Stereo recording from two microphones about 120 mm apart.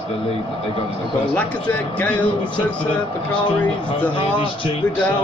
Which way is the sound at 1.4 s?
10° left (ahead or behind).